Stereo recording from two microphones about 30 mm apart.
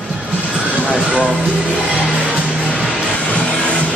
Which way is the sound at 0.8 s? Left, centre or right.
Right.